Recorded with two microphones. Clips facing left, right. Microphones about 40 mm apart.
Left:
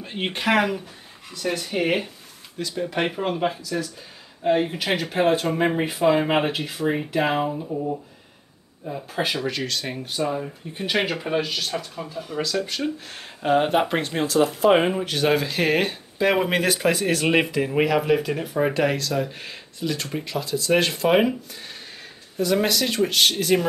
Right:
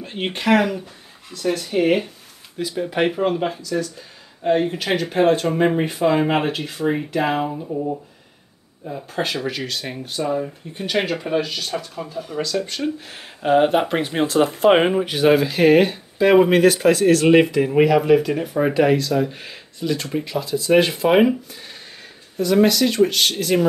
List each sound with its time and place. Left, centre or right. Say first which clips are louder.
0.0 s speech: right 2 dB; centre
2.6 s speech: right 4 dB; centre
10.7 s speech: right 1 dB; centre
14.1 s speech: right 3 dB; right
14.9 s speech: right 5 dB; centre